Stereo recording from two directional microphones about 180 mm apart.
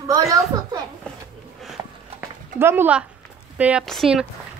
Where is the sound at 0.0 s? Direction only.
20° right (ahead or behind).